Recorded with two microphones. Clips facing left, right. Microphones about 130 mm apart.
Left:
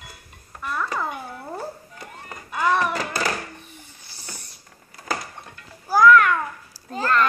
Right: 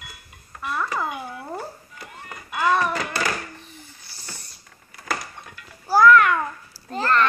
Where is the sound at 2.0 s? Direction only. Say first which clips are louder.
Left 1 dB; 30° left (ahead or behind).